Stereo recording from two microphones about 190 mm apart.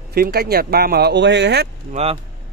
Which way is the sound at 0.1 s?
55° right (ahead or behind).